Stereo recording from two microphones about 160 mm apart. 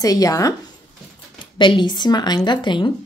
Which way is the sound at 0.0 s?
20° left (ahead or behind).